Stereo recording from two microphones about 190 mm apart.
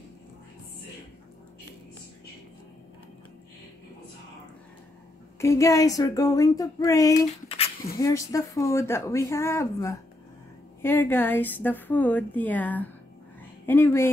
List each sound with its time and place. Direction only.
5.4 s a woman's voice: 15° left (ahead or behind)
7.4 s a sound: 30° left (ahead or behind)
8.0 s a woman's voice: 15° left (ahead or behind)